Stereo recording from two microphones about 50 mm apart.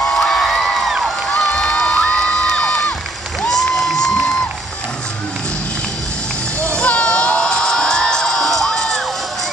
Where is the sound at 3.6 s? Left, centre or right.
Centre.